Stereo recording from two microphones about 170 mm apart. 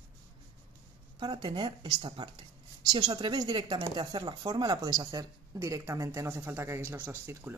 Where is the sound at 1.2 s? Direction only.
25° right (ahead or behind).